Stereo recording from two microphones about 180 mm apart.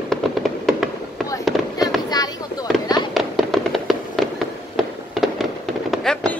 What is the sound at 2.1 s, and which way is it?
Fireworks, 20° left (ahead or behind).